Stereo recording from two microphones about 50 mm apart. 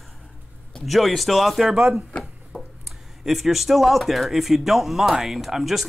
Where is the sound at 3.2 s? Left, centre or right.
Centre.